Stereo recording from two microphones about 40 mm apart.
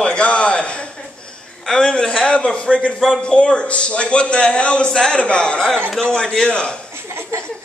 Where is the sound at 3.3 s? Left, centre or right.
Left.